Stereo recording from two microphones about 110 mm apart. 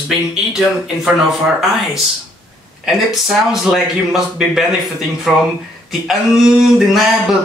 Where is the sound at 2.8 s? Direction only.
Centre (ahead or behind).